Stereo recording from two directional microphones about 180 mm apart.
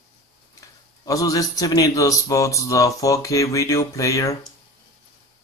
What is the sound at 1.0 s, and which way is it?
Speech, 20° left (ahead or behind).